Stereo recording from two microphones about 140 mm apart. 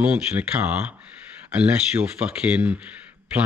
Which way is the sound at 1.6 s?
10° right (ahead or behind).